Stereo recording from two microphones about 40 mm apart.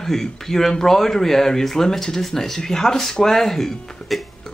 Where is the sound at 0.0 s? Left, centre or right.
Centre.